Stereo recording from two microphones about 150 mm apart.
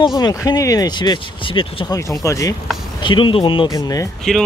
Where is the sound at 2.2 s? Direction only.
20° left (ahead or behind).